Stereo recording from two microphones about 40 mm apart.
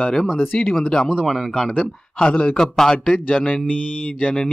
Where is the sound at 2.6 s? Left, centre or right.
Centre.